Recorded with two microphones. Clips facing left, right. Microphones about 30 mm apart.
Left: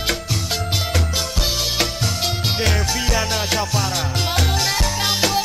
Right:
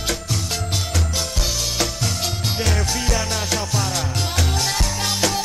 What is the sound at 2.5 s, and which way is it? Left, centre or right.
Music, centre.